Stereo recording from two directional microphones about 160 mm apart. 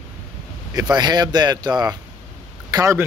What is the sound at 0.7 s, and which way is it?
Speech, 25° right (ahead or behind).